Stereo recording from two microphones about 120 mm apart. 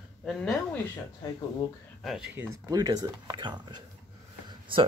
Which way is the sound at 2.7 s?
35° right (ahead or behind).